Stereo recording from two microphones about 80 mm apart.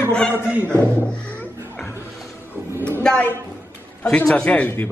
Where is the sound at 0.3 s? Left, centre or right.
Right.